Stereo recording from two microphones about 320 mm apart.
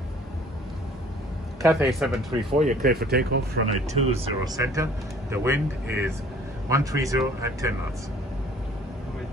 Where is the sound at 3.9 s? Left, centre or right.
Centre.